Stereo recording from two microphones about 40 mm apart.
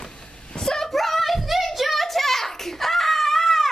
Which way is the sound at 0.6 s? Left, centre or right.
Centre.